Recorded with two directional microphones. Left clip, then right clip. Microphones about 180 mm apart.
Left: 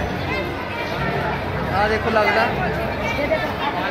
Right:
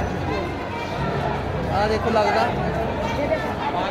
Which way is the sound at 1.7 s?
5° left (ahead or behind).